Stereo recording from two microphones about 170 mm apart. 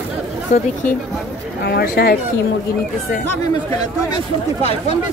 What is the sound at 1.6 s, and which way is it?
Speech, 70° left (ahead or behind).